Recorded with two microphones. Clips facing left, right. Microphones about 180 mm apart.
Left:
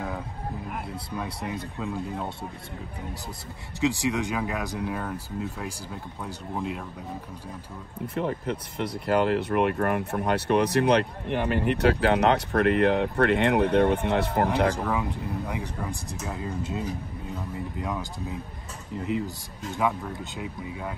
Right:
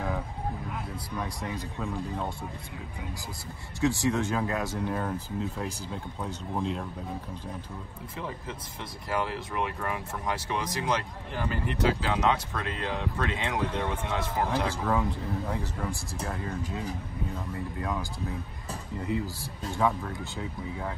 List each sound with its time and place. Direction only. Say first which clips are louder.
1.1 s speech: left 2 dB; 15° left (ahead or behind)
3.8 s speech: left 1 dB; 15° left (ahead or behind)
8.1 s speech: left 9 dB; 60° left (ahead or behind)
15.5 s speech: left 1 dB; 15° left (ahead or behind)
17.7 s speech: left 1 dB; 15° left (ahead or behind)
19.0 s speech: left 2 dB; 20° left (ahead or behind)